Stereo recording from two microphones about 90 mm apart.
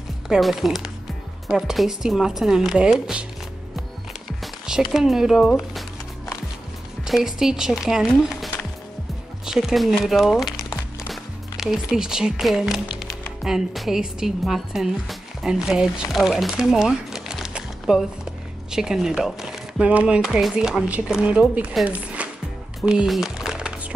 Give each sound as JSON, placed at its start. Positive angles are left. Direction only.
{"t": 0.3, "sound": "speech", "side_deg": 0}
{"t": 4.8, "sound": "speech", "side_deg": -5}
{"t": 7.1, "sound": "speech", "side_deg": -5}
{"t": 9.5, "sound": "a woman's voice", "side_deg": -5}
{"t": 20.2, "sound": "speech", "side_deg": -5}
{"t": 21.8, "sound": "music", "side_deg": -15}
{"t": 22.8, "sound": "a sound", "side_deg": -5}